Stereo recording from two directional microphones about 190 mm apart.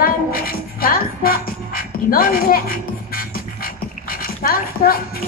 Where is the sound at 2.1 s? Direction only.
50° left (ahead or behind).